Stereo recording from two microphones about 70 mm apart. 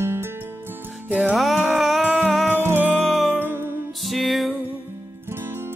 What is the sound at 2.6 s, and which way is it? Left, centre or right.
Music, right.